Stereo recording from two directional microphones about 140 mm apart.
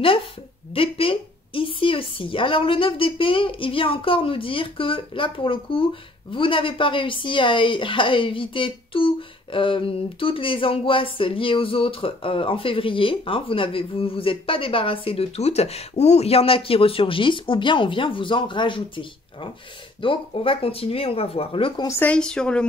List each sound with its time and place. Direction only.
0.7 s a woman's voice: 40° left (ahead or behind)
21.8 s speech: 20° left (ahead or behind)
22.1 s a woman's voice: 5° left (ahead or behind)